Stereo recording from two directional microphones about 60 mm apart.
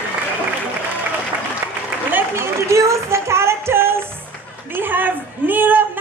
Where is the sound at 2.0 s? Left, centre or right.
Right.